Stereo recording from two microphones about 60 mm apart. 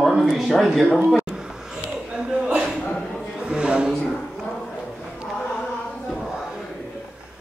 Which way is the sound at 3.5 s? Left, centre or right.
Centre.